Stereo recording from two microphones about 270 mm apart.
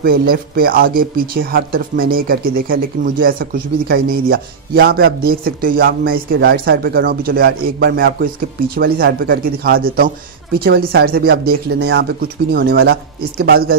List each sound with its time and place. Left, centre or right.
0.0 s speech: right